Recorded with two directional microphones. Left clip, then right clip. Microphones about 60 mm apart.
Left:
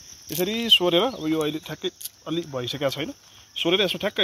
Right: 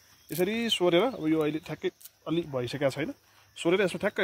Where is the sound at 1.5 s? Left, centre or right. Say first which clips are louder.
Left 3 dB; left.